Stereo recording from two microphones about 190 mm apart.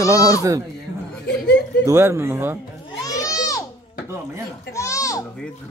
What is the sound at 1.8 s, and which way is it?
Speech, 15° right (ahead or behind).